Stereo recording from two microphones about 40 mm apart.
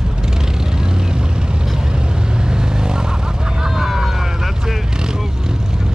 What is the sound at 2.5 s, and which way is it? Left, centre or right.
Vehicle, centre.